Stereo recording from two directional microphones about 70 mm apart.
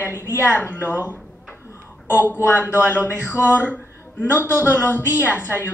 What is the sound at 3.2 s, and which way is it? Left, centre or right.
Speech, left.